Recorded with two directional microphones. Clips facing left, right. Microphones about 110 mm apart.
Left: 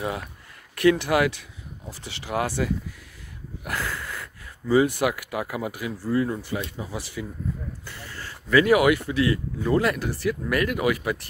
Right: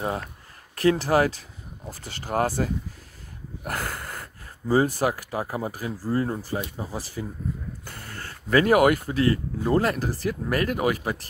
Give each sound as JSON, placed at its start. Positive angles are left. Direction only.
{"t": 0.7, "sound": "speech", "side_deg": -35}